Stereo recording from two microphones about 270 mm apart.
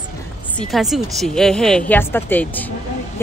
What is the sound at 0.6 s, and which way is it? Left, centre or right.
Speech, centre.